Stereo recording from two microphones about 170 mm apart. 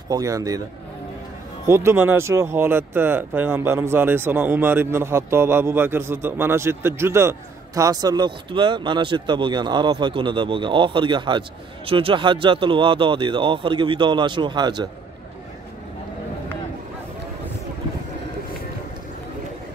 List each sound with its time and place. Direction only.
0.1 s speech: 20° right (ahead or behind)
1.7 s speech: 15° right (ahead or behind)